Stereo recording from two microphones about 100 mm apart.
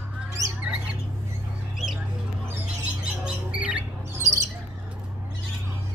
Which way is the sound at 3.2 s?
10° right (ahead or behind).